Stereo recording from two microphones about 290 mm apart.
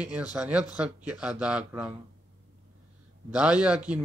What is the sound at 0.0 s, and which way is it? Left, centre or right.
A man's voice, centre.